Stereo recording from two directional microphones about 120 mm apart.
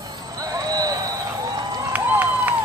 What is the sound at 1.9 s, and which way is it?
Run, 15° right (ahead or behind).